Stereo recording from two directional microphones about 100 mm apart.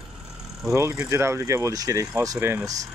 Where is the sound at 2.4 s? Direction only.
20° right (ahead or behind).